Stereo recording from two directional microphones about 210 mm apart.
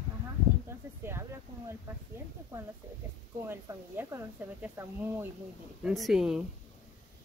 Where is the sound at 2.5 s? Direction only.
15° right (ahead or behind).